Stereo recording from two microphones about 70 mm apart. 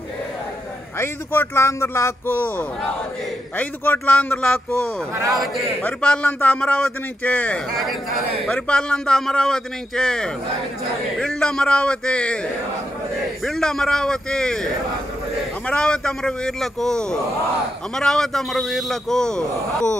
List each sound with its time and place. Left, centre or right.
0.9 s speech: left
2.3 s a man's voice: left
5.8 s a man's voice: centre
11.4 s a man's voice: centre
13.5 s a man's voice: centre